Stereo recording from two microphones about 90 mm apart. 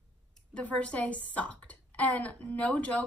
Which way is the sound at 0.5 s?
10° left (ahead or behind).